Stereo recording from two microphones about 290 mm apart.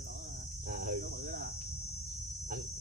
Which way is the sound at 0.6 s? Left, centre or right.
Right.